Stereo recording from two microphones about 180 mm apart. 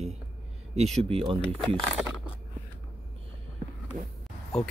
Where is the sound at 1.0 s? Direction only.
30° right (ahead or behind).